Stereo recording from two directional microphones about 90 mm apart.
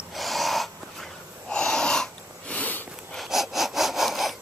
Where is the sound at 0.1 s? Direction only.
Centre (ahead or behind).